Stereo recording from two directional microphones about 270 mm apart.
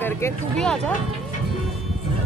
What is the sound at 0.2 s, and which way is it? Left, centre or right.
Speech, centre.